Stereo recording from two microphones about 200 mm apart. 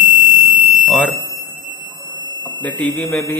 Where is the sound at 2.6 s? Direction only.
10° left (ahead or behind).